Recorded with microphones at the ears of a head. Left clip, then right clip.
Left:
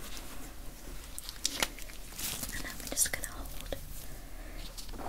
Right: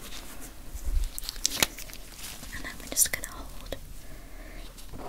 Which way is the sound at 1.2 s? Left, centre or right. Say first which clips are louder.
Right 6 dB; right.